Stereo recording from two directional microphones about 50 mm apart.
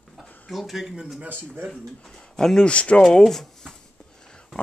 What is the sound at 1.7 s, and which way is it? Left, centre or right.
Speech, centre.